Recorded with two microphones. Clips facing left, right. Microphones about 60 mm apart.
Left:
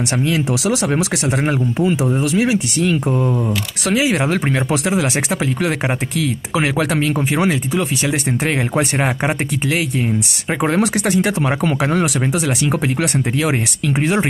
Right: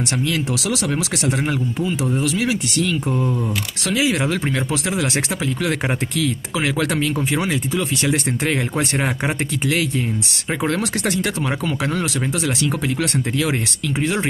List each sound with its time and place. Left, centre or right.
0.2 s speech: centre
6.9 s speech: centre
7.2 s speech: left
8.0 s speech: centre; by 14.2 s left